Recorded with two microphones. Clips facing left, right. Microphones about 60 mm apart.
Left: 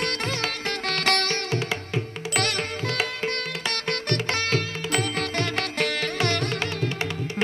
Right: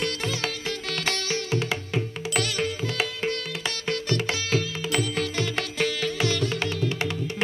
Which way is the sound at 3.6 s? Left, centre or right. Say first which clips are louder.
Even; left.